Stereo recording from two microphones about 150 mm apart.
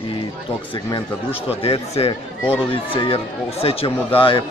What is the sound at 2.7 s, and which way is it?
Speech, 35° left (ahead or behind).